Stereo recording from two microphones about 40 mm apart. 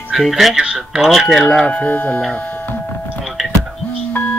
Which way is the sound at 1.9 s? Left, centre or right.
Left.